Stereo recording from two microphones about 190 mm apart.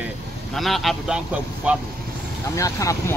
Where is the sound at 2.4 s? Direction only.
15° left (ahead or behind).